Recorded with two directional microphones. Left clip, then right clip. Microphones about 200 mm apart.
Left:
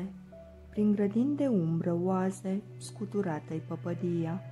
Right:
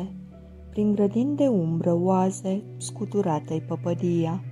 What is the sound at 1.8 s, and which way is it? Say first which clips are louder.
Speech: right 8 dB; 25° right (ahead or behind).